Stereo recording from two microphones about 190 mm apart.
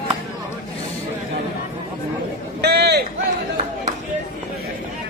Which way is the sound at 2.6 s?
60° right (ahead or behind).